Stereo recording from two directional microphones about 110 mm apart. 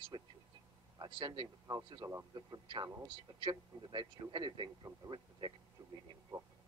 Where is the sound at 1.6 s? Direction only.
35° right (ahead or behind).